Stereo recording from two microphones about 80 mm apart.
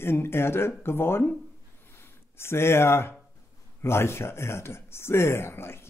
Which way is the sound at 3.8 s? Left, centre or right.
Left.